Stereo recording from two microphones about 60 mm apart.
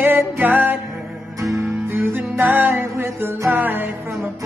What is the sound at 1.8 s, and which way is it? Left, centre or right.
Music, right.